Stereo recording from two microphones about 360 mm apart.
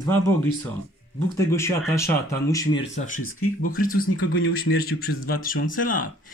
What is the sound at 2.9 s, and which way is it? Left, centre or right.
Speech, centre.